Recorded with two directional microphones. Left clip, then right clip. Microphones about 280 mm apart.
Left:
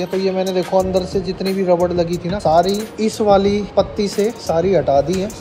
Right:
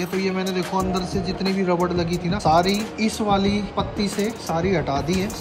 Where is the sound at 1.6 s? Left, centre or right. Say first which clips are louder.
Left 8 dB; right.